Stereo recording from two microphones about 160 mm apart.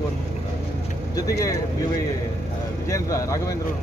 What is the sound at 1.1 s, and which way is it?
Speech, 20° left (ahead or behind).